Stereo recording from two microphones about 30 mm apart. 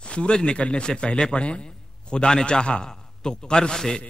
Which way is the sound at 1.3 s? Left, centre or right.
Left.